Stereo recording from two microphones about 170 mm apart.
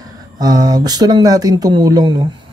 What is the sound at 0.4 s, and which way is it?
Speech, 25° right (ahead or behind).